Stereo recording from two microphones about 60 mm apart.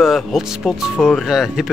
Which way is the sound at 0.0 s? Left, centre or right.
Centre.